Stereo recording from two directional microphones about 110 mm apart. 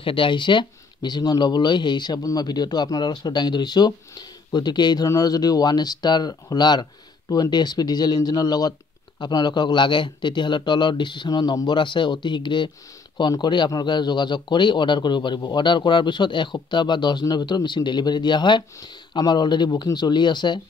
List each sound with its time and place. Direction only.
0.0 s a man's voice: 50° left (ahead or behind)